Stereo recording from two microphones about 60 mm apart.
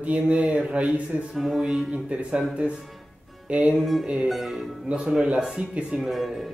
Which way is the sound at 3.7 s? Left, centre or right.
Centre.